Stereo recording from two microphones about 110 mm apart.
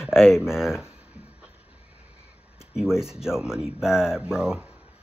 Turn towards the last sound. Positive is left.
turn(degrees=-5)  # may be behind; listen again after turning